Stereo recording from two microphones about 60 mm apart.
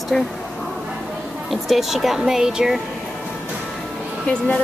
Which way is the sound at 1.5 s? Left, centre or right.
Centre.